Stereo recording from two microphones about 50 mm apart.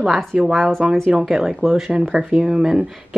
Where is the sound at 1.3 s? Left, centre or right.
Centre.